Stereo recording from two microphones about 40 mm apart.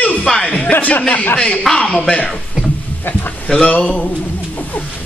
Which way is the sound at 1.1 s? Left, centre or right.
Left.